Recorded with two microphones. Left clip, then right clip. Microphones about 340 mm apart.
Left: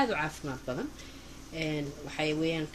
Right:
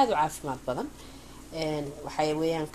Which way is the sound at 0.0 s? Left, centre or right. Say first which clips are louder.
Right 6 dB; right.